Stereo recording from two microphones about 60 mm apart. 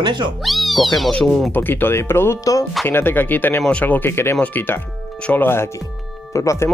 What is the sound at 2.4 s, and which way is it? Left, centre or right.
Speech, left.